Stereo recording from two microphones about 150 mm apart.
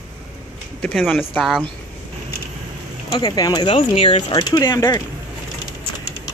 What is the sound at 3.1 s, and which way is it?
Speech, 30° left (ahead or behind).